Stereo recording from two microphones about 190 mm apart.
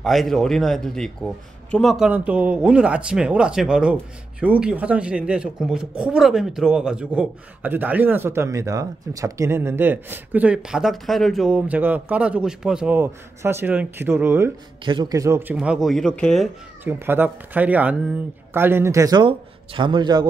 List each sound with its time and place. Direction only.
0.0 s a man's voice: centre (ahead or behind)
16.8 s a man's voice: 10° right (ahead or behind)